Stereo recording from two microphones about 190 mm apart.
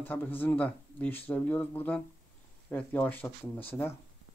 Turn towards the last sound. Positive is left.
turn(degrees=10)  # may be behind; listen again after turning